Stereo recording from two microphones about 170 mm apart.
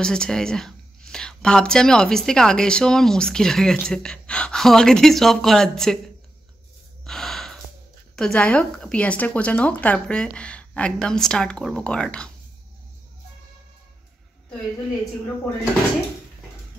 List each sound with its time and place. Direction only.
0.0 s speech: 5° left (ahead or behind)
7.1 s gasp: centre (ahead or behind)
8.2 s speech: 5° left (ahead or behind)